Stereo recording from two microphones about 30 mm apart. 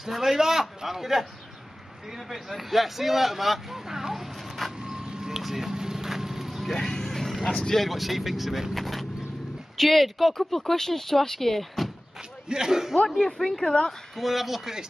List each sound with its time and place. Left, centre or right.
0.1 s a man's voice: centre
4.8 s vehicle: centre
5.3 s music: centre
6.6 s speech: centre
7.1 s vehicle: centre
7.7 s speech: centre
12.4 s speech: right
13.2 s speech: centre